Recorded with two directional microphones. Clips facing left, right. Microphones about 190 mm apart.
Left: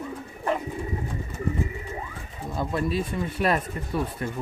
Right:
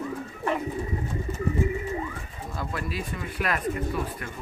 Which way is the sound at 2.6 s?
25° left (ahead or behind).